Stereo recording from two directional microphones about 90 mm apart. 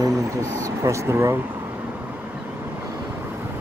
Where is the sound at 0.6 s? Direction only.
35° right (ahead or behind).